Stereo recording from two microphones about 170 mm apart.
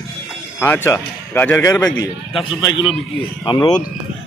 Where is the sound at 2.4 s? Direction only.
30° left (ahead or behind).